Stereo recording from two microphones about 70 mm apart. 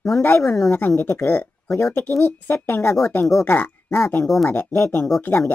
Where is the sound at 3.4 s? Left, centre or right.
Left.